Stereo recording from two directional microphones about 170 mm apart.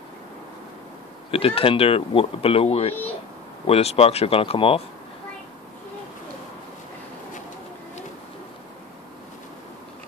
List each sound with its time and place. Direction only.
1.3 s speech: 35° left (ahead or behind)